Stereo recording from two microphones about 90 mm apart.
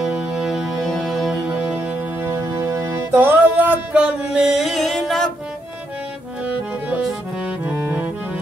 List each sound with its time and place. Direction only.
0.0 s music: 5° right (ahead or behind)
1.5 s music: 15° right (ahead or behind)
2.4 s music: 35° right (ahead or behind); by 5.3 s centre (ahead or behind)
7.4 s music: 20° right (ahead or behind)